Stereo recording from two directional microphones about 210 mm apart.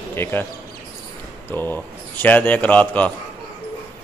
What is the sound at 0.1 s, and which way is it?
Speech, 10° left (ahead or behind).